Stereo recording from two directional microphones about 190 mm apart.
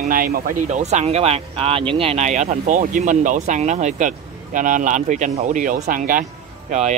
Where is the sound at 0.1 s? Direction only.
50° right (ahead or behind).